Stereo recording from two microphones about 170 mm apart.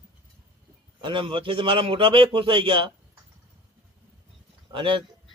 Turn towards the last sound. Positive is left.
turn(degrees=-30)  # may be behind; listen again after turning